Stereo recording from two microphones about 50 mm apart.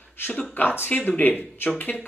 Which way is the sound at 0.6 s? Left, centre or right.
Left.